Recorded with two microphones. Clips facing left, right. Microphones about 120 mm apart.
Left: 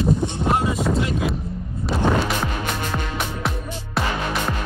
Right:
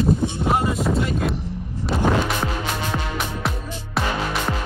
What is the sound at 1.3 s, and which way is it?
Vehicle, 80° right.